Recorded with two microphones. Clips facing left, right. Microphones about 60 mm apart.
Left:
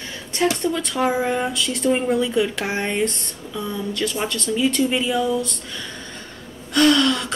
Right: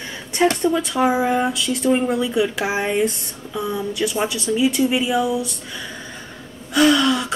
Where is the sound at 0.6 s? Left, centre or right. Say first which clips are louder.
Right 4 dB; centre.